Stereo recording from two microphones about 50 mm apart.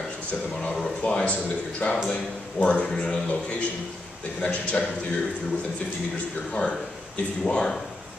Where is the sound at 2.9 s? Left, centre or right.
Centre.